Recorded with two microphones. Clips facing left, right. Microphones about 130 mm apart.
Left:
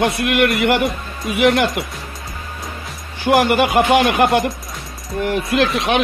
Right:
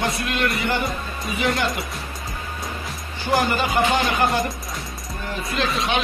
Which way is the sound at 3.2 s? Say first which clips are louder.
Left 7 dB; 75° left (ahead or behind).